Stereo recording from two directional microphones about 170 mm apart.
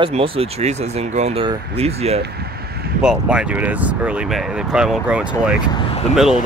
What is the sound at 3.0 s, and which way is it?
Speech, 5° right (ahead or behind).